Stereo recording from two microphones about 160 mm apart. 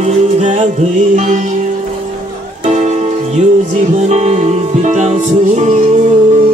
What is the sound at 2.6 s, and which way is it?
Music, 45° right (ahead or behind).